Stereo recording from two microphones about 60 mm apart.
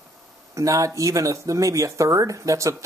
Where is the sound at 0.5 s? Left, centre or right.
Right.